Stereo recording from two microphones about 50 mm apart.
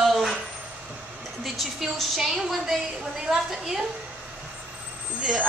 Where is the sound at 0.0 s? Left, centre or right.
Centre.